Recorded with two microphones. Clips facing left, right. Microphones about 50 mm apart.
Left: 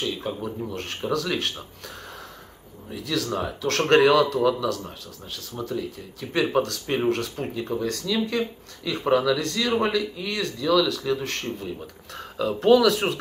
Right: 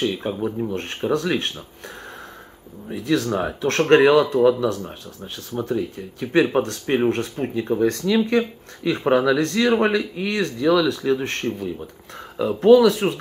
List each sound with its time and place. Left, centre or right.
0.2 s speech: right
2.9 s speech: right
6.5 s speech: right
7.8 s speech: right
12.2 s speech: right
13.0 s speech: centre